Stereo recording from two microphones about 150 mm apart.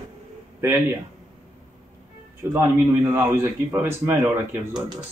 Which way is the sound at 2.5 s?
15° right (ahead or behind).